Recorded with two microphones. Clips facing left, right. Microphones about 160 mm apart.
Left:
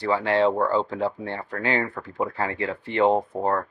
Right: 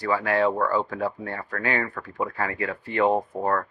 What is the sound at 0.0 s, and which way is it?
Speech, 25° left (ahead or behind).